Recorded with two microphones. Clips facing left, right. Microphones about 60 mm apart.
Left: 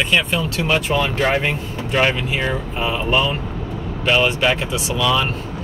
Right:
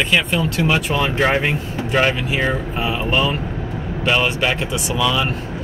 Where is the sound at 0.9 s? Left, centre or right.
Centre.